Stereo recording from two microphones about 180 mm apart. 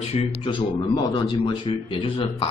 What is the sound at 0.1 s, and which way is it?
A man's voice, 30° left (ahead or behind).